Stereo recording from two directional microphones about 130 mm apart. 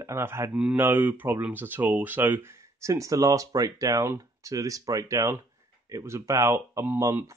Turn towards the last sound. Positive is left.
turn(degrees=-20)  # may be behind; listen again after turning